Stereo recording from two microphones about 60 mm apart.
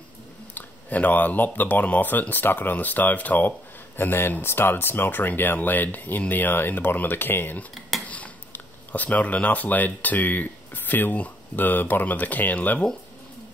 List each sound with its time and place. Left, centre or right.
0.6 s speech: left
8.0 s speech: left